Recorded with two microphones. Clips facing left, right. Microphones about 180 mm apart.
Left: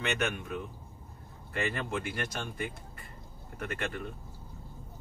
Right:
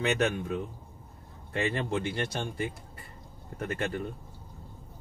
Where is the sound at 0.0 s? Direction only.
35° right (ahead or behind).